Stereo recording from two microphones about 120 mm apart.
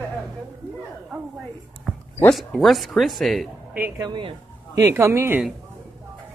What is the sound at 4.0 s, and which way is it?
Speech, 40° right (ahead or behind).